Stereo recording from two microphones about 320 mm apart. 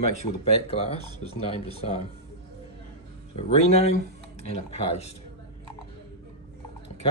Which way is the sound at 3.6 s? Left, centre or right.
Centre.